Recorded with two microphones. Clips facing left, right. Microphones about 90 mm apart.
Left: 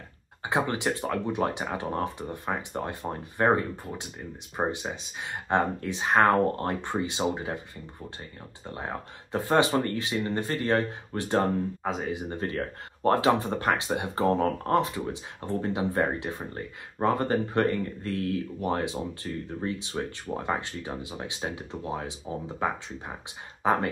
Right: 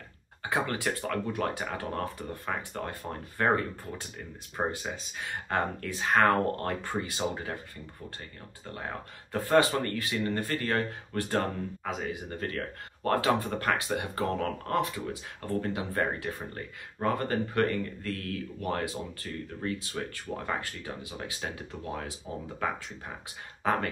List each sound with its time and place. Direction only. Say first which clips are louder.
0.4 s speech: left 3 dB; 20° left (ahead or behind)
4.6 s speech: left 3 dB; 20° left (ahead or behind)
8.7 s speech: left 3 dB; 25° left (ahead or behind)